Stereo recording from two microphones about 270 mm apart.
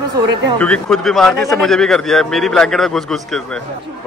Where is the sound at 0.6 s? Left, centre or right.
Centre.